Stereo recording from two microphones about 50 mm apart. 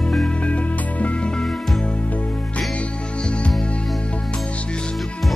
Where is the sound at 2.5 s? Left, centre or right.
Left.